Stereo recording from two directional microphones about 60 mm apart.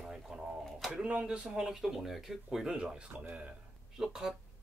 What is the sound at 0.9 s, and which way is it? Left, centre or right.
Speech, centre.